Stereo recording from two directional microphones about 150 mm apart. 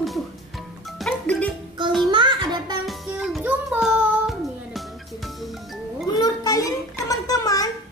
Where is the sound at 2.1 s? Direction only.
30° right (ahead or behind).